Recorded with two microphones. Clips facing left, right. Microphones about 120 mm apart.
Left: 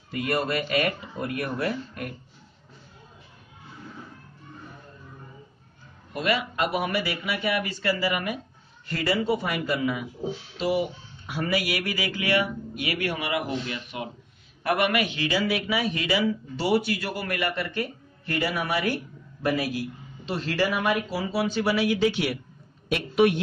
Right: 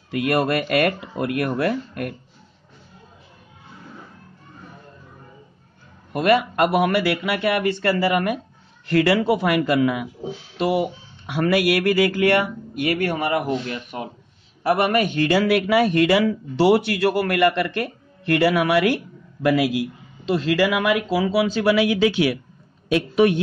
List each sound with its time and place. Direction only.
0.1 s speech: 65° right (ahead or behind)
6.1 s speech: 55° right (ahead or behind)
8.8 s a man's voice: 75° right (ahead or behind); by 14.0 s 45° right (ahead or behind)
14.6 s speech: 30° right (ahead or behind); by 18.9 s 75° right (ahead or behind)
19.4 s speech: 90° right